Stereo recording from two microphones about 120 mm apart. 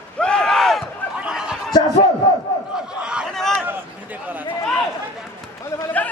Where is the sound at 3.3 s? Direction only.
5° left (ahead or behind).